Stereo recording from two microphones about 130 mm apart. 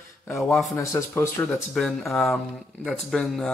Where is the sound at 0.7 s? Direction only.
20° left (ahead or behind).